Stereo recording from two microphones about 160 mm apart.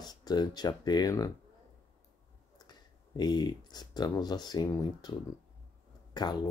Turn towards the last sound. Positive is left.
turn(degrees=25)  # may be behind; listen again after turning